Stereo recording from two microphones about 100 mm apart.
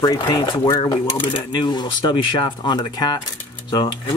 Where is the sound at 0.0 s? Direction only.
45° left (ahead or behind).